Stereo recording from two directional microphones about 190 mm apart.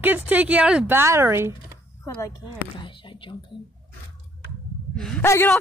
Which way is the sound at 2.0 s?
15° left (ahead or behind).